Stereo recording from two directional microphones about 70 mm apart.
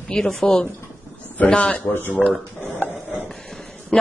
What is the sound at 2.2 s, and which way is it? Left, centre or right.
Speech, centre.